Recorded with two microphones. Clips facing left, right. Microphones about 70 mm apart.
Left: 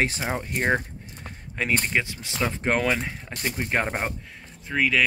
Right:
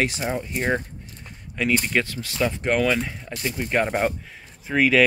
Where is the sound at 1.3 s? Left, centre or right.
Left.